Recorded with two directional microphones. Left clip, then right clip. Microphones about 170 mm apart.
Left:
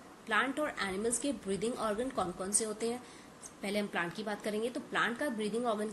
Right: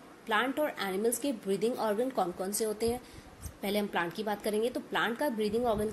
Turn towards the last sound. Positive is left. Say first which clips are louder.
# right 4 dB
turn(degrees=-25)  # may be behind; listen again after turning